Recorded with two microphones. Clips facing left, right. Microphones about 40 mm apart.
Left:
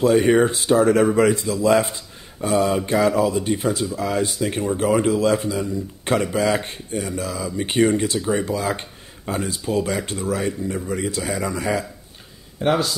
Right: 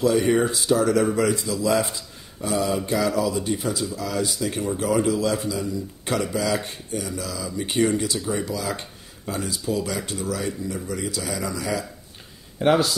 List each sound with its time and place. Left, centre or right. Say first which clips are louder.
0.0 s speech: left 4 dB; left
12.5 s speech: right 1 dB; centre